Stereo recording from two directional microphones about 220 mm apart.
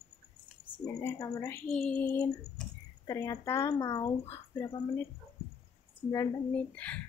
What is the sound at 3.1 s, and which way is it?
Speech, 15° left (ahead or behind).